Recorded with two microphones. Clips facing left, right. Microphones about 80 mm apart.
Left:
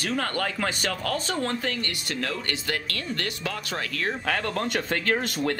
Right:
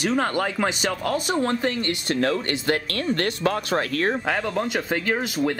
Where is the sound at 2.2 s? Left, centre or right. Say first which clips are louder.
Right 7 dB; right.